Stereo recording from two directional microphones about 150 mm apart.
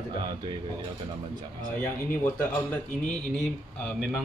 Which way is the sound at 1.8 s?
10° left (ahead or behind).